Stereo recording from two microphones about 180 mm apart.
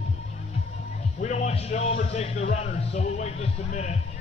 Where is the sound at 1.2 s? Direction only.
40° left (ahead or behind).